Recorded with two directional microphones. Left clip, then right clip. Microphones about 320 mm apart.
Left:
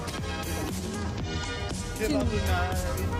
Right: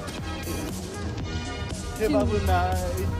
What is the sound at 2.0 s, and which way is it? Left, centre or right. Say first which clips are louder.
Speech: right 5 dB; centre.